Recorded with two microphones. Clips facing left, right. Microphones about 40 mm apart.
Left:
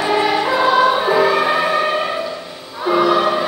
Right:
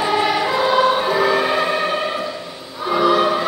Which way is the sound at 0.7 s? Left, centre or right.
Centre.